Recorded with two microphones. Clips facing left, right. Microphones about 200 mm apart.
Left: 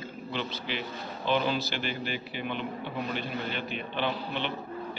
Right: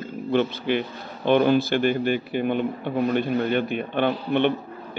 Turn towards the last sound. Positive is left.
turn(degrees=-55)  # may be behind; listen again after turning